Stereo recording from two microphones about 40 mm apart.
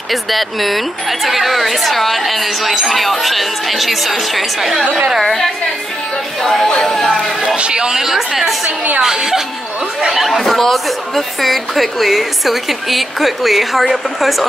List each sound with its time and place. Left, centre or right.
0.1 s speech: centre
7.4 s speech: right
8.0 s speech: centre